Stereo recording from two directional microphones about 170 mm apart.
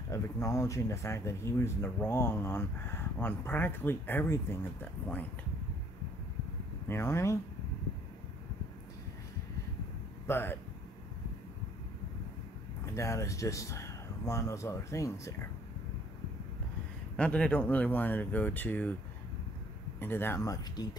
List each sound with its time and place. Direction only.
0.1 s speech: 15° left (ahead or behind)
6.9 s speech: 15° left (ahead or behind)
10.2 s speech: 15° left (ahead or behind)
12.8 s speech: 15° left (ahead or behind)
17.2 s speech: 5° left (ahead or behind)
20.0 s speech: 10° left (ahead or behind)